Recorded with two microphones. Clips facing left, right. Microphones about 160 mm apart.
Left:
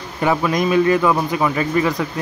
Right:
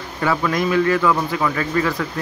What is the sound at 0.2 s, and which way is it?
Speech, 20° left (ahead or behind).